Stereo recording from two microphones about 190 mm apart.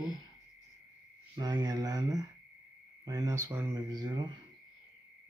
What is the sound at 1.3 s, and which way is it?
Speech, 20° right (ahead or behind).